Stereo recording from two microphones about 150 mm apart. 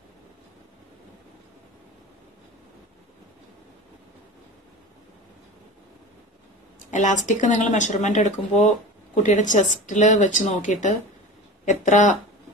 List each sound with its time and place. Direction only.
6.9 s speech: 55° left (ahead or behind)